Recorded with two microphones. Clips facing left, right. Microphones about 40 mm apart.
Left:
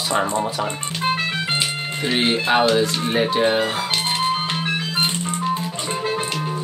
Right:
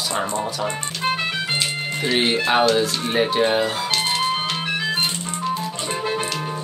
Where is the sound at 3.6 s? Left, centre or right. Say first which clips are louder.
Even; left.